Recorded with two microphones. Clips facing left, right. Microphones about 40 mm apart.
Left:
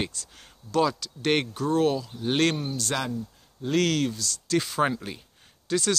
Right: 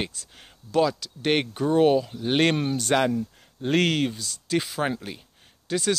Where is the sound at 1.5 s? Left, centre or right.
Right.